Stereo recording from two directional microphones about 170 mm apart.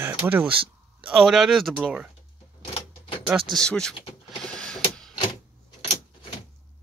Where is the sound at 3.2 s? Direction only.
Centre (ahead or behind).